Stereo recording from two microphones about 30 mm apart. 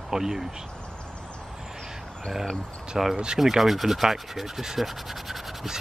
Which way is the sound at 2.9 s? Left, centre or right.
Centre.